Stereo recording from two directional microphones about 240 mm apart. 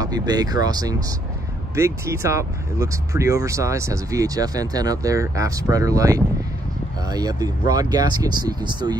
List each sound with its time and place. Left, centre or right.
0.0 s speech: centre